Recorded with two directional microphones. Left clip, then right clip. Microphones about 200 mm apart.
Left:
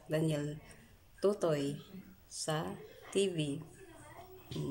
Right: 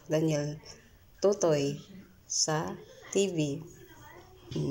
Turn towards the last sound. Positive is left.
turn(degrees=20)  # may be behind; listen again after turning